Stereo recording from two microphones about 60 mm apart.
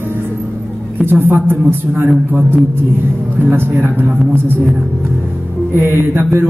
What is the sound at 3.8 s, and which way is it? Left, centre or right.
Speech, right.